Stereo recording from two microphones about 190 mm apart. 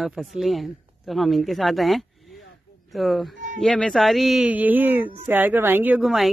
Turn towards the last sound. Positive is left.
turn(degrees=0)  # may be behind; listen again after turning